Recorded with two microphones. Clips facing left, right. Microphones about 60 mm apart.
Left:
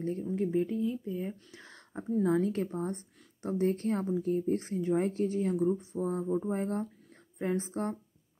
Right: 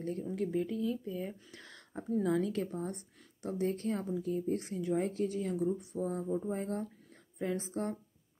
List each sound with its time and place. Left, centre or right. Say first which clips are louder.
0.4 s a woman's voice: left 4 dB; left
6.2 s speech: left 3 dB; left
6.5 s a woman's voice: left 4 dB; left